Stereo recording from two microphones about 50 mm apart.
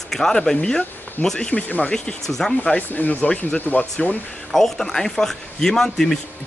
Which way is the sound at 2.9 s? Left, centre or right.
Left.